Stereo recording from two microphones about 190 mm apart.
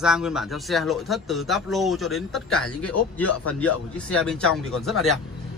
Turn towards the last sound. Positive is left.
turn(degrees=0)  # may be behind; listen again after turning